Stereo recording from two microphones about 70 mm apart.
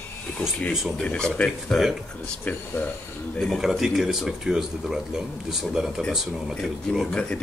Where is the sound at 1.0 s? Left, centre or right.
Centre.